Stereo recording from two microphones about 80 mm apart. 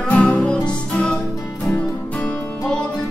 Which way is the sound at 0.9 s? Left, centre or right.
Centre.